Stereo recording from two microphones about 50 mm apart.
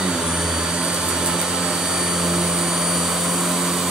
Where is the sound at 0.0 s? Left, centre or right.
Centre.